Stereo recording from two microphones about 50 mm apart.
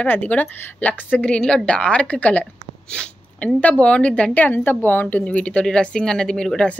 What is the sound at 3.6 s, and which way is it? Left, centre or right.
Speech, left.